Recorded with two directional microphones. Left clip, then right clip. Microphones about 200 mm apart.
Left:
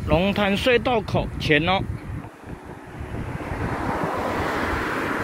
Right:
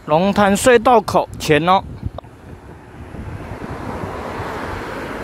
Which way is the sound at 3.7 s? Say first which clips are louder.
Left 3 dB; 30° left (ahead or behind).